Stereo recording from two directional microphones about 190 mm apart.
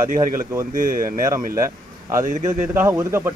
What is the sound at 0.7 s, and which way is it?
Speech, 45° right (ahead or behind).